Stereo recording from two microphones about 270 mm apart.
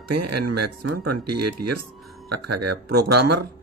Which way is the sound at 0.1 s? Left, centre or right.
Right.